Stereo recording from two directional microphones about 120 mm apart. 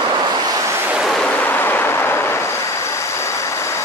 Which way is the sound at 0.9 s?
Centre (ahead or behind).